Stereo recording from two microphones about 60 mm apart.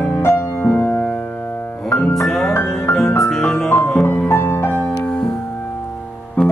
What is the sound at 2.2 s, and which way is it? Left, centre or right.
Music, centre.